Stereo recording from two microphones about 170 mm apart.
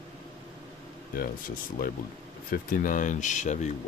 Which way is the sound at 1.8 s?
60° left (ahead or behind).